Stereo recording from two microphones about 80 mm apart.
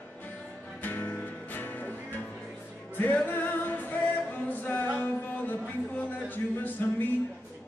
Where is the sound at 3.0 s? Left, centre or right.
Left.